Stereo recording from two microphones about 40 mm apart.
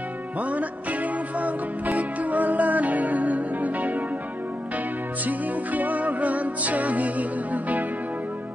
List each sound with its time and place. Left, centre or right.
0.4 s music: right
2.0 s music: right
5.2 s music: right